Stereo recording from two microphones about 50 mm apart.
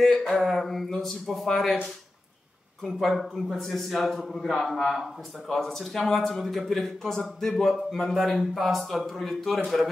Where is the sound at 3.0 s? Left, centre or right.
Centre.